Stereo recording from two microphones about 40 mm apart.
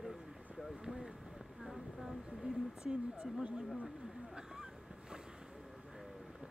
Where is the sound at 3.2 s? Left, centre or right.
Right.